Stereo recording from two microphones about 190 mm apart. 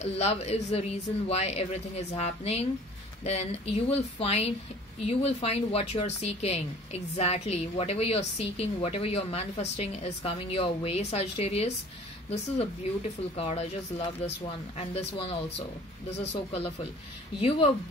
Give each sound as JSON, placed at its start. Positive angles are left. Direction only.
{"t": 0.0, "sound": "a woman's voice", "side_deg": 35}
{"t": 13.4, "sound": "a woman's voice", "side_deg": 30}